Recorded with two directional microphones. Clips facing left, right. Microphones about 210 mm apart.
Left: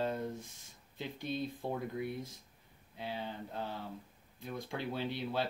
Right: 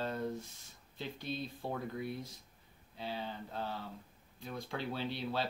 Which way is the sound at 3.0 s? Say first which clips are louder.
Even; 15° left (ahead or behind).